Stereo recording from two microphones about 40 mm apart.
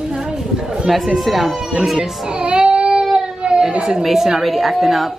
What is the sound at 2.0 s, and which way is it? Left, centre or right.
Child singing, centre.